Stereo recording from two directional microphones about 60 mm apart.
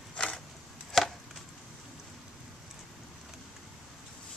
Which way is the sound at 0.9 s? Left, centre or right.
Centre.